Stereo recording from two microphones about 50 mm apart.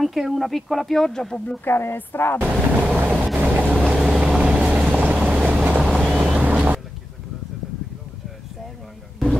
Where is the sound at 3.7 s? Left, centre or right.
Centre.